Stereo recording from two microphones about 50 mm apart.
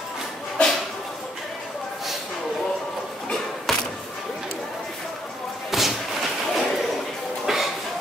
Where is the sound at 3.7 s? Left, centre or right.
Centre.